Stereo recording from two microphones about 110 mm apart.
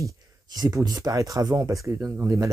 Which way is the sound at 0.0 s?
35° right (ahead or behind).